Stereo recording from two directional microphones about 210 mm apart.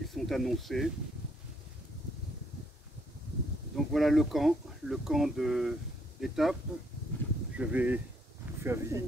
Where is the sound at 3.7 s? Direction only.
Centre (ahead or behind).